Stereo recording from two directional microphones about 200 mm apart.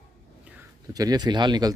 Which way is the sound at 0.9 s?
20° right (ahead or behind).